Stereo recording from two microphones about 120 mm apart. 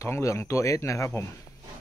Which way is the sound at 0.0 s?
25° left (ahead or behind).